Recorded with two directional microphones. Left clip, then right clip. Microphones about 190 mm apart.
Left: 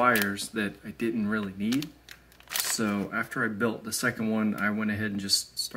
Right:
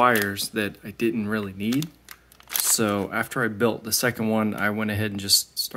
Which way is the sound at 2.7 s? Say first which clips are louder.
Right 8 dB; 35° right (ahead or behind).